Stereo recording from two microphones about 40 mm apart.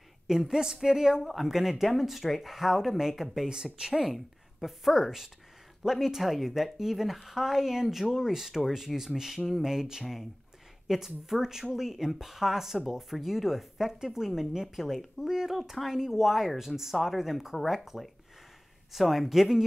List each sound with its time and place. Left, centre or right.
0.3 s speech: centre
1.2 s speech: centre
4.1 s a woman's voice: centre